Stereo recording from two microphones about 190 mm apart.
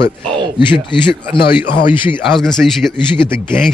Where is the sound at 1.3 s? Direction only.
25° left (ahead or behind).